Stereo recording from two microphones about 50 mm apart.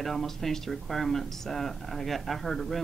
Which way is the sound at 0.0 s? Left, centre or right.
Centre.